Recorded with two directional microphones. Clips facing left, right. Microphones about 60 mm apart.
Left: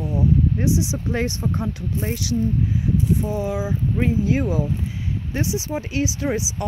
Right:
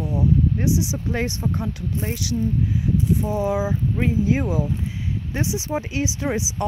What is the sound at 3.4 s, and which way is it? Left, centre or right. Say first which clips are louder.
Speech: right 3 dB; right.